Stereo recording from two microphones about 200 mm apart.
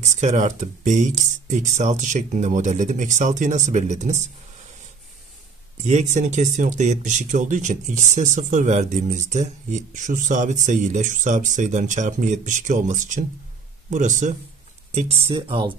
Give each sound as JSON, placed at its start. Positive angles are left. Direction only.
{"t": 0.2, "sound": "speech", "side_deg": -35}
{"t": 5.8, "sound": "speech", "side_deg": -35}